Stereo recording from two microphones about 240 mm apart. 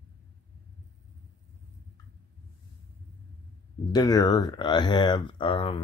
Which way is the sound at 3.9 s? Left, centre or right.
Centre.